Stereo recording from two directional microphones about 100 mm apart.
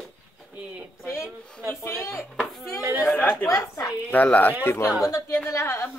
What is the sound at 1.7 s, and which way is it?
Speech, 20° left (ahead or behind).